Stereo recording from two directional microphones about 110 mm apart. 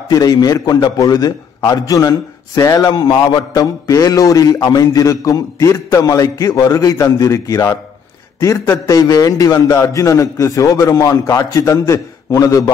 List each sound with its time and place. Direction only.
0.1 s a man's voice: 35° left (ahead or behind)